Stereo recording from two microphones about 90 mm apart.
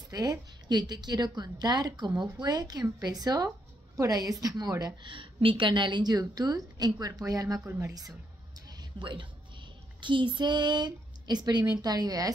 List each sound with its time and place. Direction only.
0.1 s a woman's voice: 45° right (ahead or behind)
5.0 s a woman's voice: 70° right (ahead or behind); by 8.2 s 40° right (ahead or behind)
9.0 s speech: 65° right (ahead or behind); by 12.3 s 45° right (ahead or behind)